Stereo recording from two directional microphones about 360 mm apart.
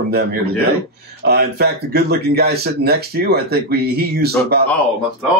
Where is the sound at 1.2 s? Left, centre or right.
Right.